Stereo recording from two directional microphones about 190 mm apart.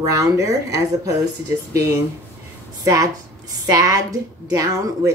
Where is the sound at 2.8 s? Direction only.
15° right (ahead or behind).